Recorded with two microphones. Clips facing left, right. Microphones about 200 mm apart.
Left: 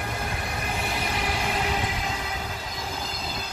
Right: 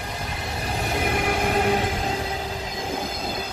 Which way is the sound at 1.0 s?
55° right (ahead or behind).